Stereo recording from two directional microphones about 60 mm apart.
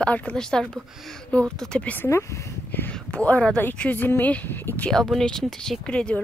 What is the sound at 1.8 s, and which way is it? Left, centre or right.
Speech, left.